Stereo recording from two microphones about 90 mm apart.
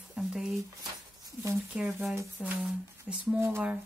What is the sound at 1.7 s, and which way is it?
Speech, 20° right (ahead or behind).